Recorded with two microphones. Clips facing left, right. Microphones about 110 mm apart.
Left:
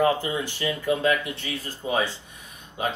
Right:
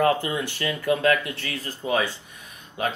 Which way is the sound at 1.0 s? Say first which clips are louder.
Right 2 dB; 15° left (ahead or behind).